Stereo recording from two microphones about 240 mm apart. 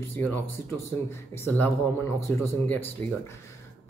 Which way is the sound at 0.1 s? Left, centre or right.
Centre.